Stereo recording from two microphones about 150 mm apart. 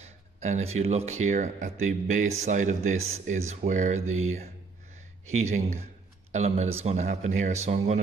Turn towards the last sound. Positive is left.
turn(degrees=-50)  # may be behind; listen again after turning